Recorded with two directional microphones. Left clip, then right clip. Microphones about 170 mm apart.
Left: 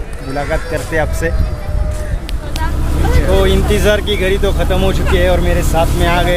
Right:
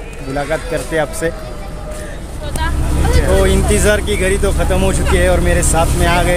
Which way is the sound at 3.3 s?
5° right (ahead or behind).